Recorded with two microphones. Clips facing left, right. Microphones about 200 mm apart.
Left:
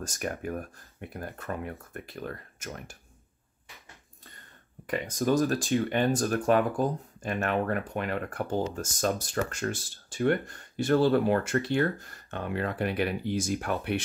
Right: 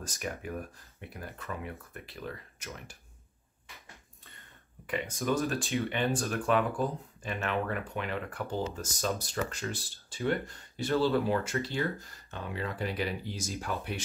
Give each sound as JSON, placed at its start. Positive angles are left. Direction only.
{"t": 0.0, "sound": "speech", "side_deg": 50}
{"t": 4.8, "sound": "speech", "side_deg": 40}